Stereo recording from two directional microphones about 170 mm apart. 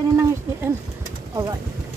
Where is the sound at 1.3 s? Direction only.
20° right (ahead or behind).